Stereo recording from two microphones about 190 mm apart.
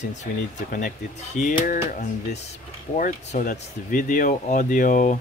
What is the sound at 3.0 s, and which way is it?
Speech, 45° left (ahead or behind).